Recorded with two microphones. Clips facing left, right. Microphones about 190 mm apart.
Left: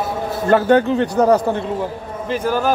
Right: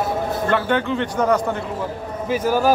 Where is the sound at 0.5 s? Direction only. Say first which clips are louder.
Left 9 dB; 40° left (ahead or behind).